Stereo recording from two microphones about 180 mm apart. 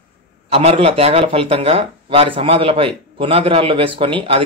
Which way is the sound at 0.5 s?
30° right (ahead or behind).